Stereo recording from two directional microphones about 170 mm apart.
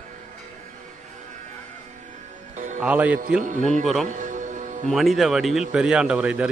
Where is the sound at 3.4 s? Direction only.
50° right (ahead or behind).